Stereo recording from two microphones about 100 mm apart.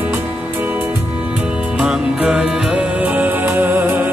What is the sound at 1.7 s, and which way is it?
Music, 10° right (ahead or behind).